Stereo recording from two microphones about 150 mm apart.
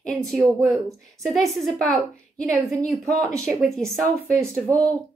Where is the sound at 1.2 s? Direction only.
Centre (ahead or behind).